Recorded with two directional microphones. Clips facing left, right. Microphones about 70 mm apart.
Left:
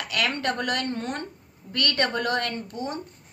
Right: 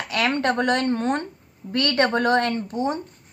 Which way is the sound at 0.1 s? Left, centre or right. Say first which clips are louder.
Right 5 dB; right.